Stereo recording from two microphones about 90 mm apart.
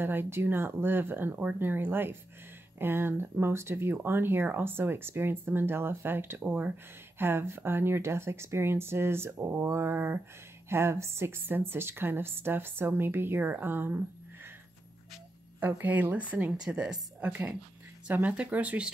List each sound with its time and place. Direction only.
0.0 s speech: 25° right (ahead or behind)
15.6 s a woman's voice: 20° right (ahead or behind)